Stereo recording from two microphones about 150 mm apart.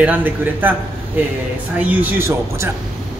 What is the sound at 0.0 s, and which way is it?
Speech, 10° right (ahead or behind).